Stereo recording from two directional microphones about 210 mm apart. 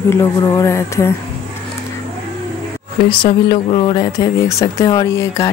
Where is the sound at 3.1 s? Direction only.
25° left (ahead or behind).